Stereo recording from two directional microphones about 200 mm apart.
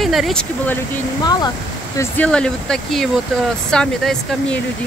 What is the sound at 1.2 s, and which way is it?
Speech, 20° left (ahead or behind).